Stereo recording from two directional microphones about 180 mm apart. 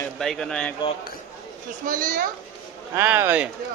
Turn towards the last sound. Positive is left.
turn(degrees=-10)  # may be behind; listen again after turning